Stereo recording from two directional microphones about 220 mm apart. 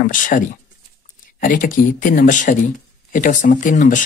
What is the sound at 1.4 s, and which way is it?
Speech, 40° left (ahead or behind).